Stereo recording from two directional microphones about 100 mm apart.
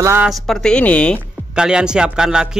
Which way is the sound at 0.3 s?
5° left (ahead or behind).